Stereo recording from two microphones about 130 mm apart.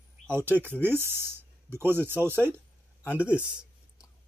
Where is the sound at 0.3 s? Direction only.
15° right (ahead or behind).